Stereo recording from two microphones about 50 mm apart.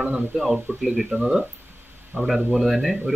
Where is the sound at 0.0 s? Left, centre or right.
Centre.